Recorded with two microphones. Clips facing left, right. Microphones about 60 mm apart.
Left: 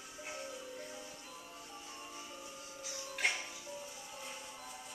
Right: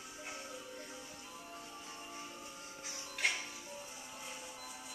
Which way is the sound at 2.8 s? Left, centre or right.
Right.